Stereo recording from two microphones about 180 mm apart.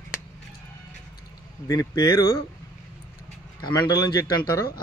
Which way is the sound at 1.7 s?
20° left (ahead or behind).